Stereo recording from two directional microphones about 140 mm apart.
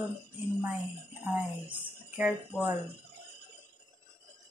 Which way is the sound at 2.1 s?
10° right (ahead or behind).